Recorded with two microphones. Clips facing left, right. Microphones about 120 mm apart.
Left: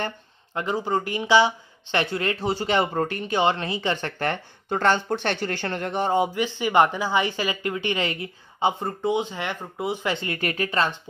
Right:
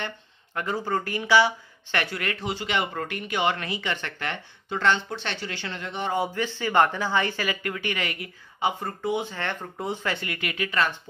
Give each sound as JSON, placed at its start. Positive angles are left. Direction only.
{"t": 0.6, "sound": "speech", "side_deg": 20}
{"t": 6.1, "sound": "a woman's voice", "side_deg": 15}